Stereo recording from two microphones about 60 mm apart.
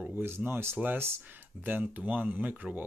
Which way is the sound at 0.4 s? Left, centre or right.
Right.